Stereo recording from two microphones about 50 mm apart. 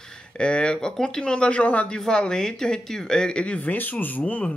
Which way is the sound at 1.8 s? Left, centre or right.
Centre.